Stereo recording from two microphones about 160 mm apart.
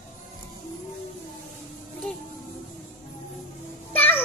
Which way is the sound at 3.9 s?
10° left (ahead or behind).